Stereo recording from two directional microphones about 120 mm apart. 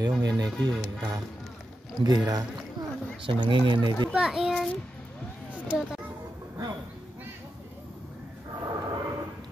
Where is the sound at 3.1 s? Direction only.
45° right (ahead or behind).